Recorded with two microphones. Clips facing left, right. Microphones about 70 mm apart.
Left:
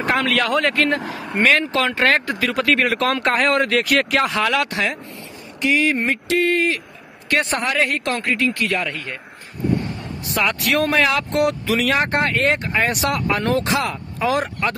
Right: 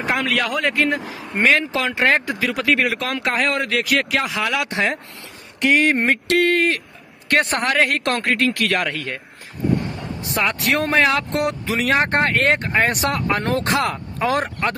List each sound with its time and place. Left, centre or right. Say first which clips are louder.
0.0 s speech: left 2 dB; centre
5.6 s speech: right 2 dB; right
9.9 s speech: even; right